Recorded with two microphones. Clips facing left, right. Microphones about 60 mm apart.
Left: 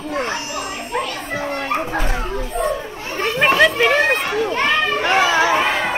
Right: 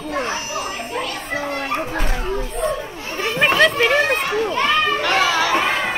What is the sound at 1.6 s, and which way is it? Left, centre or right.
Dog, centre.